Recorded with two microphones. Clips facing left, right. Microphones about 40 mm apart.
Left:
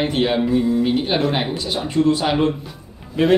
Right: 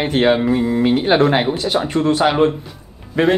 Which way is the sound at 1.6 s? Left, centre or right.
Right.